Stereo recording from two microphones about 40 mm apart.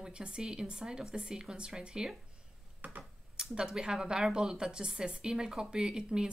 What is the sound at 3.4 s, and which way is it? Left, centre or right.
A woman's voice, centre.